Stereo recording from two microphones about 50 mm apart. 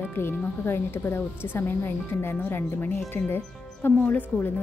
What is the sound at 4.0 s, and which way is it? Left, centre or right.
Speech, left.